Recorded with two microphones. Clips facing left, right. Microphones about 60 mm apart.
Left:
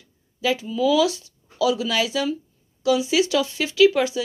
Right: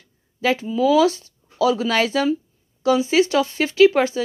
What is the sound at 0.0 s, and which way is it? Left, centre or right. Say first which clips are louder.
Speech: right 3 dB; right.